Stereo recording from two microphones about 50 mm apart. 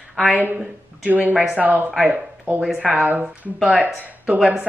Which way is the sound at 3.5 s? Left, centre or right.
Centre.